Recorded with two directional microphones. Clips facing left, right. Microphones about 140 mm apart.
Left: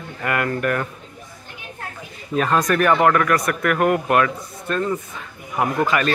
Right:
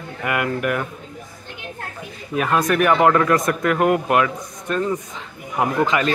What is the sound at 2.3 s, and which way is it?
A man's voice, 10° right (ahead or behind).